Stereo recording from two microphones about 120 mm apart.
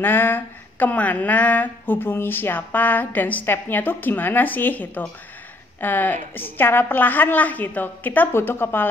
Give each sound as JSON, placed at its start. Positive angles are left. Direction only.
{"t": 0.0, "sound": "speech", "side_deg": 15}